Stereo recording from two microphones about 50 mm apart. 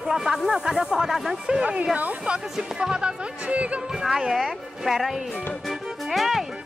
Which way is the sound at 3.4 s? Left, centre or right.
Right.